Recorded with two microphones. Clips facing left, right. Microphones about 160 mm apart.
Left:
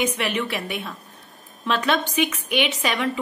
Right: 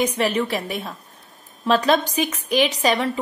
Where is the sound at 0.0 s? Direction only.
35° right (ahead or behind).